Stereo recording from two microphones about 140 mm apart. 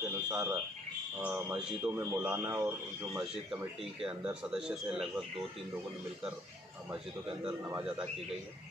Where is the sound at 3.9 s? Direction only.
5° right (ahead or behind).